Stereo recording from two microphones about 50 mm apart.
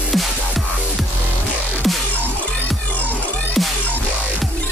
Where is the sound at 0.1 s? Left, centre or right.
Centre.